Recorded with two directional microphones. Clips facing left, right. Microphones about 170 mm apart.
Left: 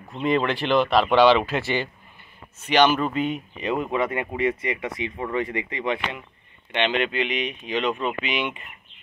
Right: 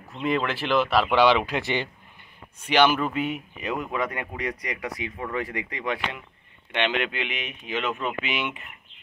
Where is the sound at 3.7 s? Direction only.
25° left (ahead or behind).